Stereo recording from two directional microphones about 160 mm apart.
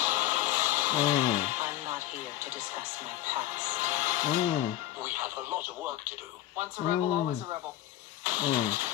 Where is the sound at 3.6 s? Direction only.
50° right (ahead or behind).